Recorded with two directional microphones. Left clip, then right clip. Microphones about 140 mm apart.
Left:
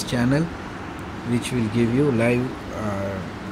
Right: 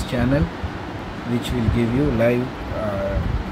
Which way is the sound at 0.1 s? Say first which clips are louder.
Right 1 dB; 25° left (ahead or behind).